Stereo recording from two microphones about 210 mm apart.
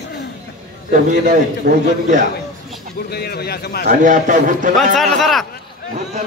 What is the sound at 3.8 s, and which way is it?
Speech, 35° right (ahead or behind).